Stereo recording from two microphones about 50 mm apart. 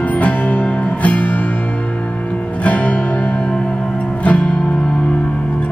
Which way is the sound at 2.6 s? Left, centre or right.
Left.